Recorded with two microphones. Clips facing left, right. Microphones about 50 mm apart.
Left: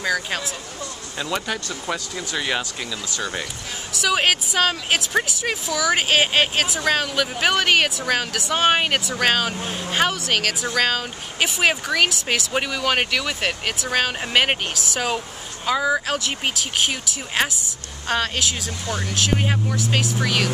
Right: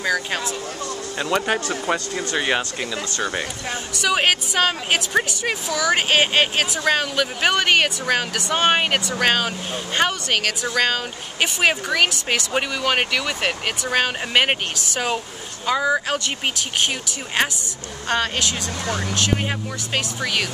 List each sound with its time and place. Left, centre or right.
0.0 s speech: centre
1.1 s speech: centre
1.5 s speech: right
3.9 s speech: centre